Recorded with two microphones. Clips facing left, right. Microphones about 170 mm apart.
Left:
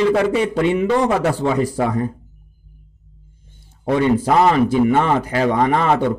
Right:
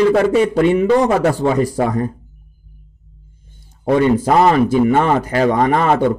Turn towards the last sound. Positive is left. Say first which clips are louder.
# right 2 dB
turn(degrees=-45)  # may be behind; listen again after turning